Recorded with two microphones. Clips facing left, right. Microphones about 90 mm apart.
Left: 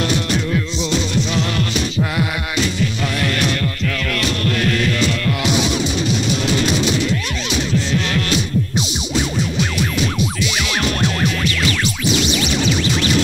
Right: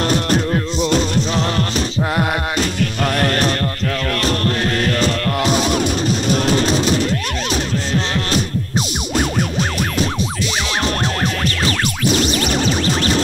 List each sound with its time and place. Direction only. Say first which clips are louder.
0.0 s music: right 2 dB; 40° right (ahead or behind)